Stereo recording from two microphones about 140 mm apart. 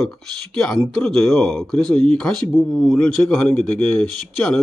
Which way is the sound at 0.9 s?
5° left (ahead or behind).